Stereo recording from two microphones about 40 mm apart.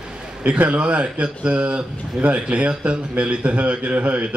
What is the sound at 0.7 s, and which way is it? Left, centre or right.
A man's voice, right.